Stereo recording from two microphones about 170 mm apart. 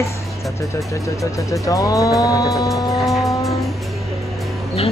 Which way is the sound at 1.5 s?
20° left (ahead or behind).